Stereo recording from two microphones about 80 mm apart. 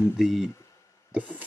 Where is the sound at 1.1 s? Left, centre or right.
Centre.